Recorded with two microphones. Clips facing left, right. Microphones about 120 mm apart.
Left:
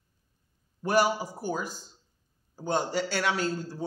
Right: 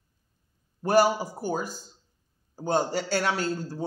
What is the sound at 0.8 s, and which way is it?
A man's voice, 40° right (ahead or behind).